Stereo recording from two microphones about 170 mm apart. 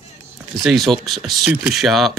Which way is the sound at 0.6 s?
Centre (ahead or behind).